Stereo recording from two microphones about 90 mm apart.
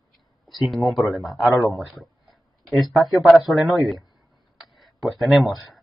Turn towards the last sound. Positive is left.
turn(degrees=0)  # may be behind; listen again after turning